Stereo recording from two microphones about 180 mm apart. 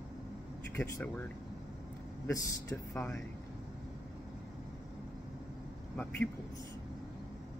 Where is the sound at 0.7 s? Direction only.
10° left (ahead or behind).